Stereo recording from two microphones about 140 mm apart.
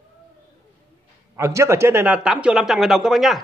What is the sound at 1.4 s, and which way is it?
A man's voice, 20° right (ahead or behind).